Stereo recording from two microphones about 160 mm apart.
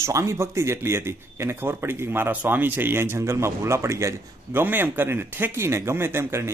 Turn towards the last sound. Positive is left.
turn(degrees=-15)  # may be behind; listen again after turning